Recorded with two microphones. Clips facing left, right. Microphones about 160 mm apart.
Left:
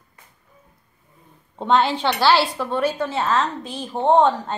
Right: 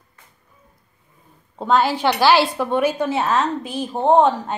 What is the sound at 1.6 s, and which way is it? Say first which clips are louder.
A woman's voice: right 1 dB; 5° right (ahead or behind).